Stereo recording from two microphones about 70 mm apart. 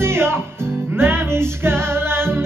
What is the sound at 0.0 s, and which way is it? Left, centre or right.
Music, right.